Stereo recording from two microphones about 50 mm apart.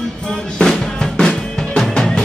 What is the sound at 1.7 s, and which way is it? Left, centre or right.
Music, centre.